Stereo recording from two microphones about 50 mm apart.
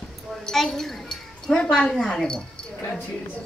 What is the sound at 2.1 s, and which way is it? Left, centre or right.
Speech, centre.